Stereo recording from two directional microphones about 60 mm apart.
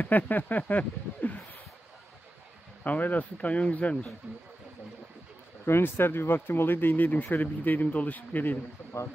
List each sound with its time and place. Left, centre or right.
0.0 s speech: left
2.8 s speech: left
4.2 s speech: right
5.7 s speech: left